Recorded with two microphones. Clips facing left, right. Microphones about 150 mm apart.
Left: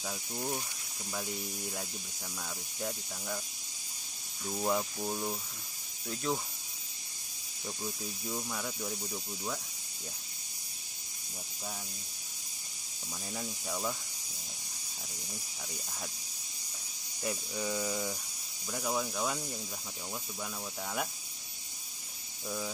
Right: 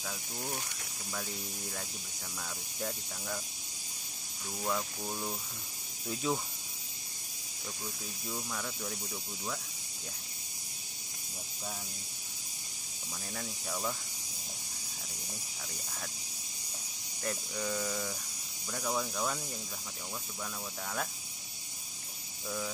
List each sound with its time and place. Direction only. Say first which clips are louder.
0.0 s speech: left 3 dB; 15° left (ahead or behind)
4.6 s speech: left 3 dB; 20° left (ahead or behind)
5.0 s speech: left 3 dB; 10° left (ahead or behind)
6.0 s speech: right 1 dB; 5° right (ahead or behind)
8.3 s speech: left 1 dB; 5° left (ahead or behind)
13.3 s speech: left 1 dB; 5° left (ahead or behind)
17.2 s speech: left 1 dB; 10° left (ahead or behind)